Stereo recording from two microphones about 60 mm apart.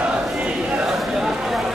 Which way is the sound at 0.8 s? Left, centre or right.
Centre.